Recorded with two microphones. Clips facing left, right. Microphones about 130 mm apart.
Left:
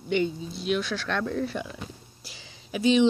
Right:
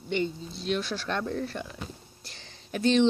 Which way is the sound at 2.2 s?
5° left (ahead or behind).